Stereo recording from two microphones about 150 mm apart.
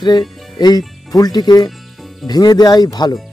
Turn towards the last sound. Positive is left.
turn(degrees=25)  # may be behind; listen again after turning